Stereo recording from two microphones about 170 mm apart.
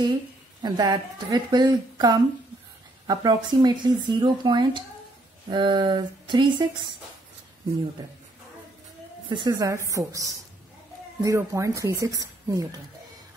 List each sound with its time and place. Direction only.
0.6 s speech: 25° right (ahead or behind)
9.3 s speech: 25° right (ahead or behind)